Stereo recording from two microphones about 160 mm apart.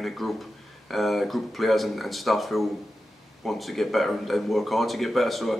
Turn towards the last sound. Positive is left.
turn(degrees=0)  # may be behind; listen again after turning